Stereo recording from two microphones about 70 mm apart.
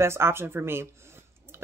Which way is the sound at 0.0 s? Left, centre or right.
Right.